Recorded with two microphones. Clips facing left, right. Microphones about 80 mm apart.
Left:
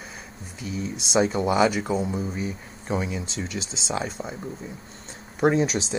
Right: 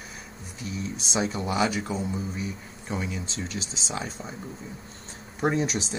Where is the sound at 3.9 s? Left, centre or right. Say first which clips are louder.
Left 6 dB; left.